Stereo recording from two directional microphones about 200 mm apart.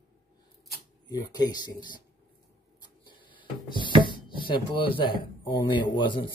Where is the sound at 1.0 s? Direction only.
20° left (ahead or behind).